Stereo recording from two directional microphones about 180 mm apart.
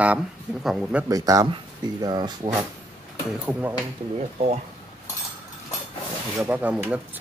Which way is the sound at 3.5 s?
10° right (ahead or behind).